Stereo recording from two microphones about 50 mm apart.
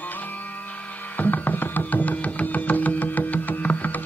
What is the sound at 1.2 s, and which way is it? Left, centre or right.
Music, left.